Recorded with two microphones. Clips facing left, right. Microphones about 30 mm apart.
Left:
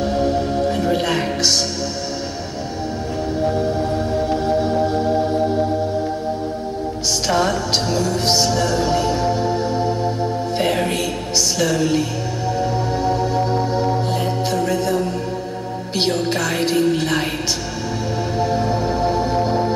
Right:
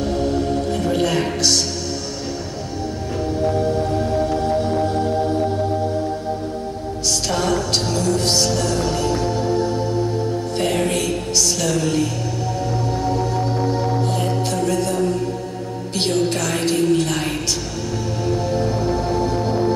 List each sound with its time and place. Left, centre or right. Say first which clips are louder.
0.0 s music: left 2 dB; centre
3.5 s music: even; centre
7.2 s music: left 3 dB; centre